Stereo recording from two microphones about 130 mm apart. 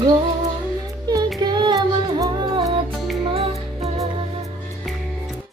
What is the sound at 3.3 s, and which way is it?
Music, 55° right (ahead or behind).